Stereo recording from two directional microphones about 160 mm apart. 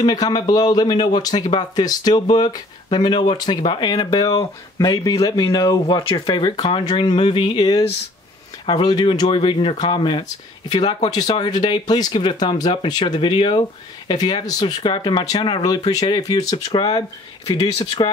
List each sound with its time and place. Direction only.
0.0 s speech: 25° left (ahead or behind)
6.5 s speech: 40° left (ahead or behind)
6.8 s speech: 25° left (ahead or behind)